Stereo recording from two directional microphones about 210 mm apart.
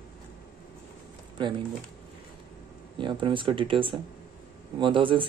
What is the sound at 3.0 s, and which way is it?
Speech, 25° right (ahead or behind).